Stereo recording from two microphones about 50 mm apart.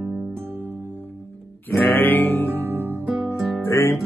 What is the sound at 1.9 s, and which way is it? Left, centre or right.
Music, left.